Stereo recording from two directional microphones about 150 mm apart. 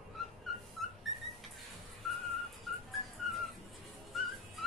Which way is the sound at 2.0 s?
Centre (ahead or behind).